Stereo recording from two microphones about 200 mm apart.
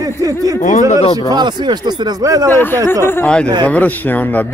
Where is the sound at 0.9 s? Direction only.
30° left (ahead or behind).